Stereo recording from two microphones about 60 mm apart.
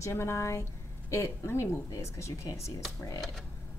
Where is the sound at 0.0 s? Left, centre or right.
Left.